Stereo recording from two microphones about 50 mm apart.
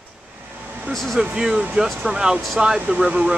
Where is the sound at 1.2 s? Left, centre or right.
Centre.